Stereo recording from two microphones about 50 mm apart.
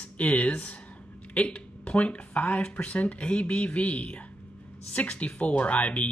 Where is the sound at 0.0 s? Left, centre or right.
Left.